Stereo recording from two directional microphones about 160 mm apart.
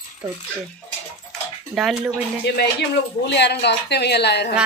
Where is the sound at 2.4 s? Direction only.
90° left.